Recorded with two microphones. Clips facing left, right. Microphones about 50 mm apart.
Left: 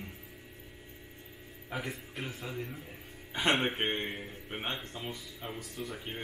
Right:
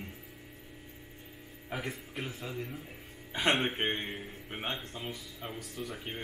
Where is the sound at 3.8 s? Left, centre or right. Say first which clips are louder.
Even; centre.